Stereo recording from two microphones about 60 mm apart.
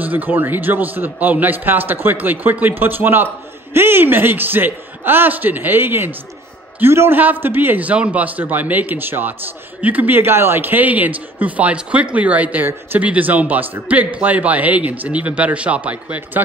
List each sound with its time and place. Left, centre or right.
0.0 s a man's voice: right